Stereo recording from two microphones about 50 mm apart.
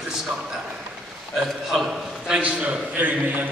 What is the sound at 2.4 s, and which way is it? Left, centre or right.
A man's voice, right.